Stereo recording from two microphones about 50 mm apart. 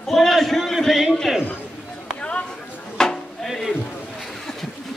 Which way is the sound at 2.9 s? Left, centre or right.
Centre.